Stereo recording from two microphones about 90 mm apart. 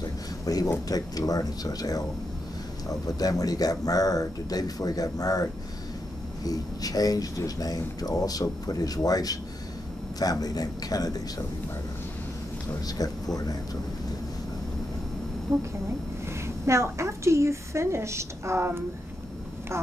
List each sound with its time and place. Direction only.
0.0 s a sound: 45° left (ahead or behind)
0.8 s speech: 45° left (ahead or behind)
3.2 s speech: 45° left (ahead or behind)
12.8 s speech: 45° left (ahead or behind)
16.3 s a woman's voice: 30° right (ahead or behind)